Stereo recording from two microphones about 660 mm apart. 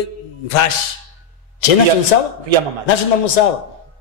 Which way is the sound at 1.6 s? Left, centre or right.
Left.